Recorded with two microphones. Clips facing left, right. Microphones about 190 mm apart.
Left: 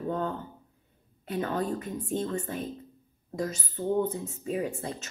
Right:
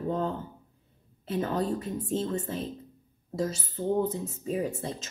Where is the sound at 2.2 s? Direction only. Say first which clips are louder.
Right 1 dB; 20° right (ahead or behind).